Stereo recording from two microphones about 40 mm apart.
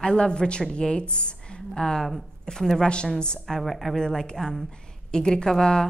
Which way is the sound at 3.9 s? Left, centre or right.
Centre.